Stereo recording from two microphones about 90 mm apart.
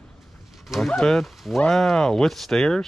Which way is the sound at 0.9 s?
5° left (ahead or behind).